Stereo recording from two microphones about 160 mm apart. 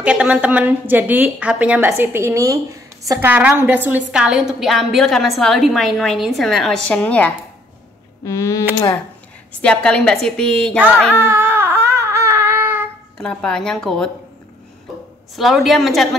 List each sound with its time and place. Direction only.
0.0 s a woman's voice: 5° right (ahead or behind); by 8.6 s 20° left (ahead or behind)
9.6 s a woman's voice: 5° left (ahead or behind)
11.1 s a sound: 15° right (ahead or behind)
13.2 s a woman's voice: 5° left (ahead or behind)
15.3 s a woman's voice: centre (ahead or behind)